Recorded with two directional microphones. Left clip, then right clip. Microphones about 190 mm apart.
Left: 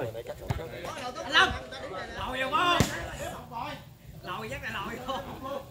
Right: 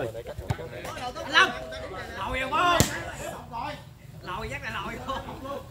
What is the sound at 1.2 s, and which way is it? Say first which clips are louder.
Chatter: right 2 dB; 15° right (ahead or behind).